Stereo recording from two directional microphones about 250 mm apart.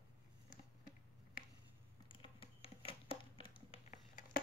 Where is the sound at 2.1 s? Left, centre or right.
Left.